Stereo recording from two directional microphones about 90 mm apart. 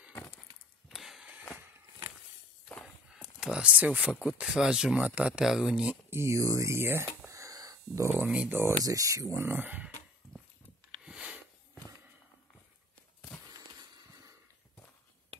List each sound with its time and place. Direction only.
0.1 s a sound: 20° left (ahead or behind)
0.8 s a sound: centre (ahead or behind)
3.3 s speech: 10° right (ahead or behind)
6.0 s speech: 30° right (ahead or behind)
7.2 s a sound: 40° right (ahead or behind)
8.1 s speech: 10° right (ahead or behind)
8.5 s speech: 25° right (ahead or behind)
8.8 s speech: 40° right (ahead or behind)
9.4 s speech: 20° right (ahead or behind)
11.1 s sniff: 15° right (ahead or behind)